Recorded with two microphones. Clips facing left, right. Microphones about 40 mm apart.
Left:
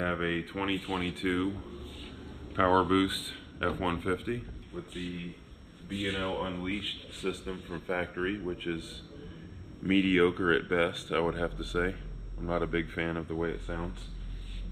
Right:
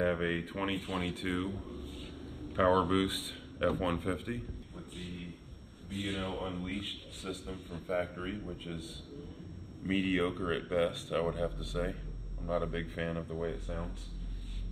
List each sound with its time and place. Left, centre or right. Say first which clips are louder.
0.0 s a man's voice: left 1 dB; centre; by 5.3 s left
5.9 s speech: left 4 dB; left
6.2 s speech: left 5 dB; left
8.5 s speech: left 7 dB; left
9.9 s speech: left 7 dB; left
11.8 s speech: left 3 dB; left
13.1 s a man's voice: left 4 dB; left